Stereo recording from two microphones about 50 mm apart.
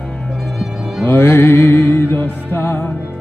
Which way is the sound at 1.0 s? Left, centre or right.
Left.